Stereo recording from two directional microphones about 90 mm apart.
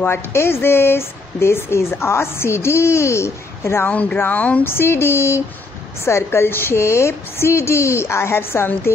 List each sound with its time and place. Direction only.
0.0 s speech: 30° left (ahead or behind)
3.9 s speech: 15° left (ahead or behind)